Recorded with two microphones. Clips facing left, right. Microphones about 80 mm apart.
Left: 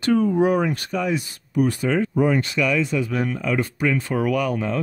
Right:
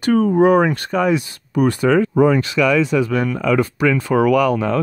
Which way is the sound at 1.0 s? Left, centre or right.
Right.